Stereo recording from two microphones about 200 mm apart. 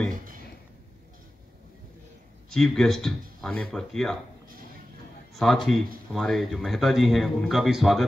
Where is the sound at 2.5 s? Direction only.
Centre (ahead or behind).